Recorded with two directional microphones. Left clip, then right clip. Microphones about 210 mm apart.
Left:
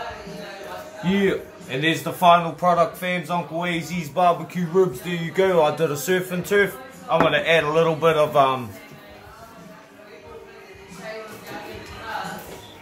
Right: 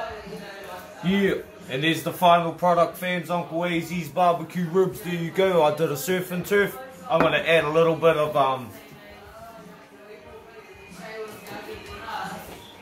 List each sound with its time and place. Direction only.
1.0 s a man's voice: 10° right (ahead or behind)
8.0 s a man's voice: 20° left (ahead or behind)